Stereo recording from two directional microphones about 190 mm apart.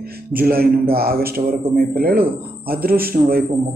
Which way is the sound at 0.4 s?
50° right (ahead or behind).